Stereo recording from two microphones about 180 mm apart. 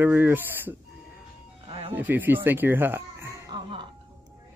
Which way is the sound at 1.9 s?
10° right (ahead or behind).